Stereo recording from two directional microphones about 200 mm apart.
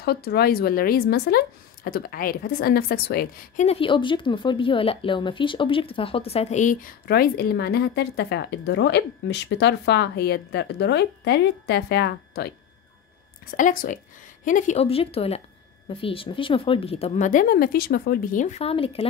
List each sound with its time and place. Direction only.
0.0 s a woman's voice: 50° left (ahead or behind)
3.6 s a woman's voice: 25° left (ahead or behind); by 12.5 s 55° left (ahead or behind)
13.6 s a woman's voice: 40° left (ahead or behind)